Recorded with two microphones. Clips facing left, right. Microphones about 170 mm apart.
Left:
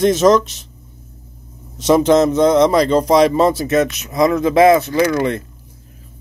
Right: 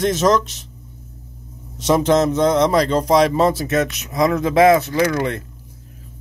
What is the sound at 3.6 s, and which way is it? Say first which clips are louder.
Speech: left 4 dB; 10° left (ahead or behind).